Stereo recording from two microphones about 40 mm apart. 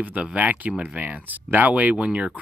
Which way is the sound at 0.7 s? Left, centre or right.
Right.